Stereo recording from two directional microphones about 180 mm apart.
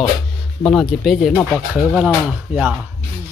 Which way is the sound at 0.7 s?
Centre (ahead or behind).